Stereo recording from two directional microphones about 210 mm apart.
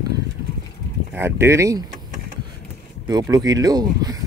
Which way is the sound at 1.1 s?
10° right (ahead or behind).